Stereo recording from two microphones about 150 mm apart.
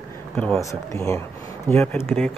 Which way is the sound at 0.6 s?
20° left (ahead or behind).